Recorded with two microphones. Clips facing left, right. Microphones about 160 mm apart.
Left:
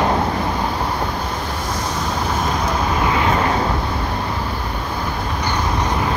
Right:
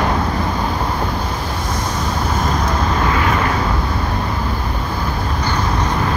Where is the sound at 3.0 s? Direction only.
20° left (ahead or behind).